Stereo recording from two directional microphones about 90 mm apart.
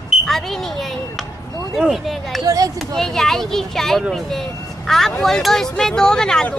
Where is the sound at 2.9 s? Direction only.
5° left (ahead or behind).